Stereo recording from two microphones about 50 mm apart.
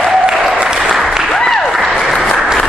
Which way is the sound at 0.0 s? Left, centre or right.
Centre.